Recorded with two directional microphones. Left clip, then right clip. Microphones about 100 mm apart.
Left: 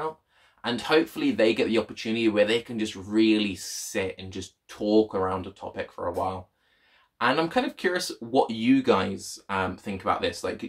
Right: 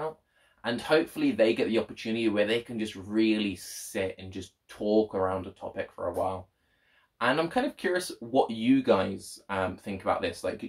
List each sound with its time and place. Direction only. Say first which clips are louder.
0.6 s speech: left 2 dB; 30° left (ahead or behind)